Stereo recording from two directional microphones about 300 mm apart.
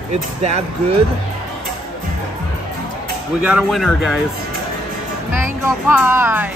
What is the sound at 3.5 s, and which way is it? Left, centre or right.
Speech, centre.